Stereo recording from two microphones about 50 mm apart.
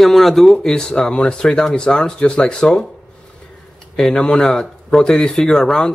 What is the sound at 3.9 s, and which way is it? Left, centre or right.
Speech, centre.